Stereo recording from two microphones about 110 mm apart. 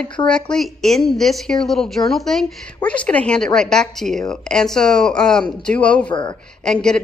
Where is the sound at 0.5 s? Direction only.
5° left (ahead or behind).